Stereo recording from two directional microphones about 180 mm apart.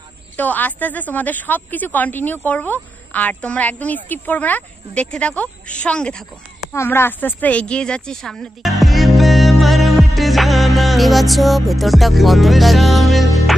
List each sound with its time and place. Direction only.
0.4 s a woman's voice: 10° left (ahead or behind)